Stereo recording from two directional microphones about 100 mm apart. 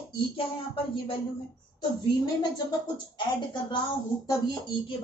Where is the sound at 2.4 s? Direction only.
45° left (ahead or behind).